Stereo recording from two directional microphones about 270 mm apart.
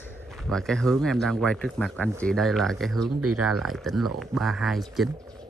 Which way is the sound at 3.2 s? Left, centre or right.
Right.